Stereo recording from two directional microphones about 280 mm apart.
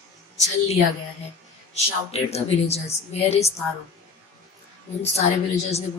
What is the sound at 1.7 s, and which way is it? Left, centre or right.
A woman's voice, left.